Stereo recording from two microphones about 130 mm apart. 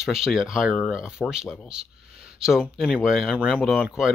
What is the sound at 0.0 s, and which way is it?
Speech, 5° right (ahead or behind).